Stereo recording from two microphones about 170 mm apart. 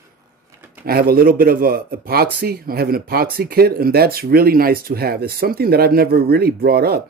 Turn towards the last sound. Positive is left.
turn(degrees=-65)  # may be behind; listen again after turning